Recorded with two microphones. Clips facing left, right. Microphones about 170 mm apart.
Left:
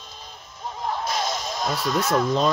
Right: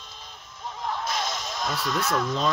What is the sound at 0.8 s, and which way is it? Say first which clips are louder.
Music: left 3 dB; 35° left (ahead or behind).